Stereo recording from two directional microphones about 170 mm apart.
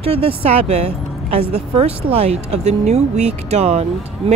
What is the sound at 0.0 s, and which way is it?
Speech, 35° right (ahead or behind).